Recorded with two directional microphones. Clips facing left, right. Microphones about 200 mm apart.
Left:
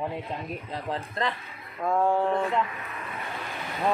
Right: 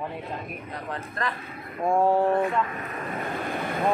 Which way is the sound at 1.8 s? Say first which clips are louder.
Right 3 dB; 25° right (ahead or behind).